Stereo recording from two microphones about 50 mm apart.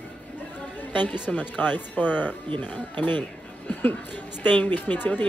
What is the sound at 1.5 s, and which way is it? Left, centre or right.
Speech, left.